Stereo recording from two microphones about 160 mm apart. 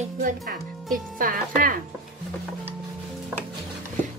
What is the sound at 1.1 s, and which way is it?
Speech, 60° right (ahead or behind).